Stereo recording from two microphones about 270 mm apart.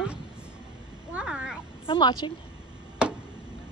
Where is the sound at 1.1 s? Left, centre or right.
Centre.